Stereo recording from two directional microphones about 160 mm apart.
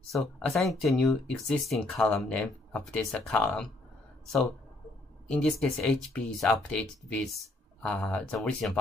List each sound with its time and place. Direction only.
0.1 s speech: centre (ahead or behind)
5.3 s speech: 5° left (ahead or behind)